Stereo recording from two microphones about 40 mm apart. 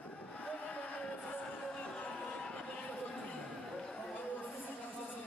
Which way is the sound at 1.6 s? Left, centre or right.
Left.